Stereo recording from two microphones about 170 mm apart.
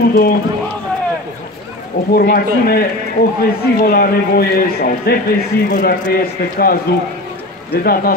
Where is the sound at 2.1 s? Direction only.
55° left (ahead or behind).